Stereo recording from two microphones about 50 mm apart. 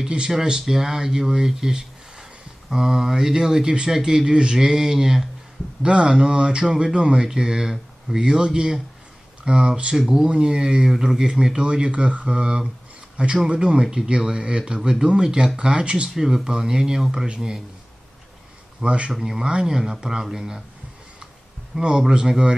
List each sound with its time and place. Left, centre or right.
0.0 s speech: centre
18.8 s speech: right
19.1 s speech: centre
21.7 s speech: centre